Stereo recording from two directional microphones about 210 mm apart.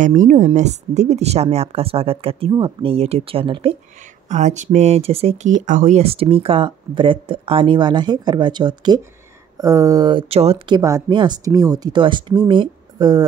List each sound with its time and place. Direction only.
0.0 s speech: 35° right (ahead or behind)
10.8 s speech: 15° right (ahead or behind)